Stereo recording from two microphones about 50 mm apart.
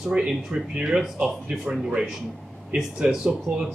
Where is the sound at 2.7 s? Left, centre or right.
Centre.